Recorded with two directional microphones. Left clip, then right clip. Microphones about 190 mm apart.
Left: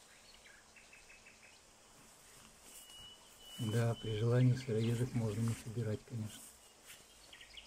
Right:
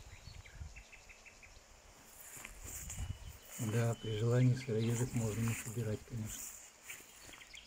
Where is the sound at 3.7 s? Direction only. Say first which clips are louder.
Even; centre (ahead or behind).